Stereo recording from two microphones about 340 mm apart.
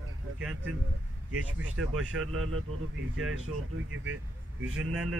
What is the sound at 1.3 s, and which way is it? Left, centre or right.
Speech, right.